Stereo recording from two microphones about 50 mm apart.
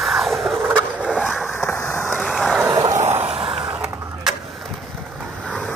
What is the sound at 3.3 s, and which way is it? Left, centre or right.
Skateboard, centre.